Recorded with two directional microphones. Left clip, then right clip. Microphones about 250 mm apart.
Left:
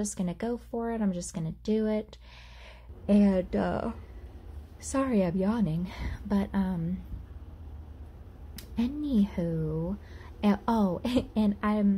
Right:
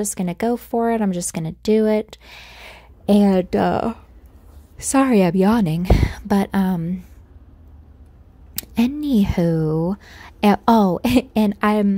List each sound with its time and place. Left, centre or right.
0.0 s speech: right
8.5 s speech: right